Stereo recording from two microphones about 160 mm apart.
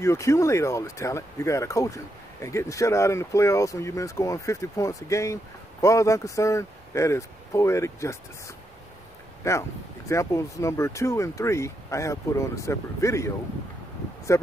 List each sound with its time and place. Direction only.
0.0 s speech: 20° left (ahead or behind)
14.3 s speech: 20° left (ahead or behind)